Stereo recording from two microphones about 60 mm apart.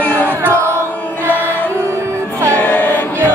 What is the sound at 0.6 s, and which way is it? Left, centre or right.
Music, right.